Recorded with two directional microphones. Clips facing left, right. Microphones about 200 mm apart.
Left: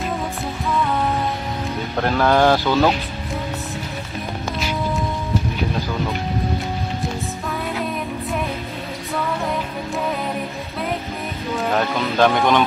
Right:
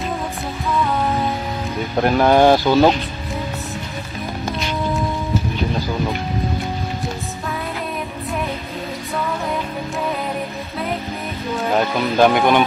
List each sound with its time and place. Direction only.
2.0 s speech: 15° right (ahead or behind)
4.6 s music: 5° left (ahead or behind)
11.7 s speech: 10° right (ahead or behind)